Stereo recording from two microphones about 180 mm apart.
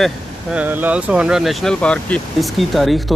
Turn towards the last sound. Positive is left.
turn(degrees=0)  # may be behind; listen again after turning